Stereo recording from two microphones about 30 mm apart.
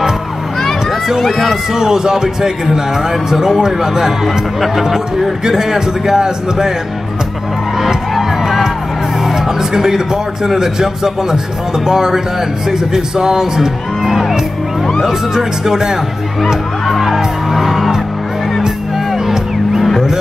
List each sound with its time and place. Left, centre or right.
0.8 s run: centre
1.2 s speech: centre
1.7 s a man's voice: centre
8.1 s music: centre
9.2 s a man's voice: centre
17.0 s music: centre
19.1 s music: centre